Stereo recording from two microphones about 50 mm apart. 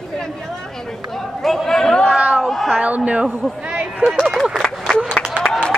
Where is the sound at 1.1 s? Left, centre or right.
Centre.